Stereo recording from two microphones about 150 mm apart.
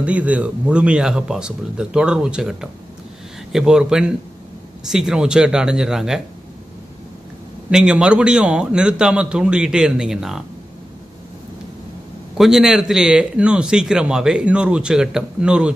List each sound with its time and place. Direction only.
0.0 s a man's voice: 10° right (ahead or behind)
7.7 s a man's voice: 5° right (ahead or behind)
12.4 s a man's voice: 5° right (ahead or behind)